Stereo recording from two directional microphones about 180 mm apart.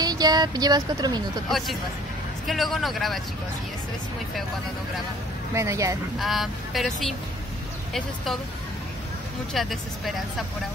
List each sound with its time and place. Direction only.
0.0 s speech: 20° right (ahead or behind)
2.4 s speech: centre (ahead or behind)
5.5 s speech: 15° right (ahead or behind)
6.1 s speech: centre (ahead or behind)
9.5 s speech: centre (ahead or behind)